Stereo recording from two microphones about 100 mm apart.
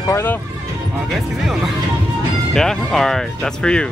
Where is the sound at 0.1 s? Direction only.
20° left (ahead or behind).